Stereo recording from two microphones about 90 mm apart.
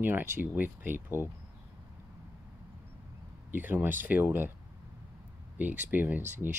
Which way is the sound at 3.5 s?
20° right (ahead or behind).